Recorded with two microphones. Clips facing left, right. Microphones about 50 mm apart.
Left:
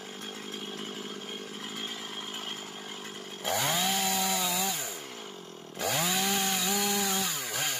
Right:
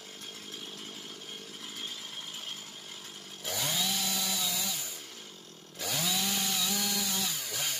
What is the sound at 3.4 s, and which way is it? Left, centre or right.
Chainsaw, left.